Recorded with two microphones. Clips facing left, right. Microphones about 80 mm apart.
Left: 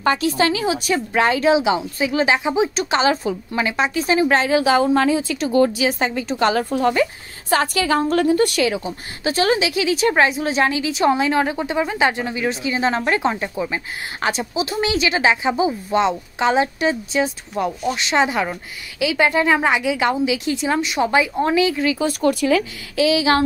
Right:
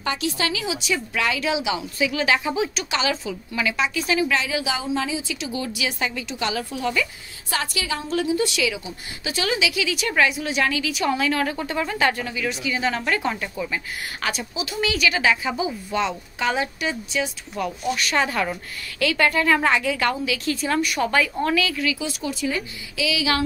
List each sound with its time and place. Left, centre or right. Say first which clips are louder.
0.0 s a woman's voice: left 7 dB; left
21.9 s speech: left 10 dB; left
22.9 s speech: left 7 dB; left